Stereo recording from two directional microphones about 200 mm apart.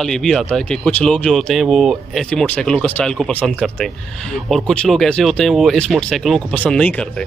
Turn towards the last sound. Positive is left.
turn(degrees=5)  # may be behind; listen again after turning